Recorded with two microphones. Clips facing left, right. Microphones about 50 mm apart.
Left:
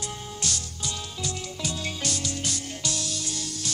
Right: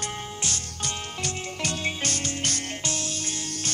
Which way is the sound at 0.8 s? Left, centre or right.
Right.